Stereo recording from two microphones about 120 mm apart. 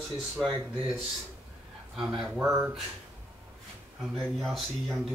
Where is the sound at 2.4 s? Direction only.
15° right (ahead or behind).